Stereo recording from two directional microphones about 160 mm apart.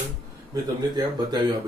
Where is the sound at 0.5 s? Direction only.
25° right (ahead or behind).